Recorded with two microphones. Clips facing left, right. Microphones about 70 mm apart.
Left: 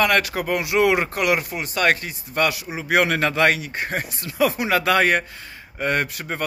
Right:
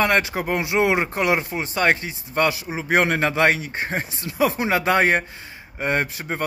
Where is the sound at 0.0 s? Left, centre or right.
Right.